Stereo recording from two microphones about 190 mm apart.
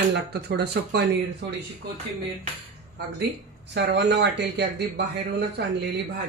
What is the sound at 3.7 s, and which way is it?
Speech, 60° right (ahead or behind).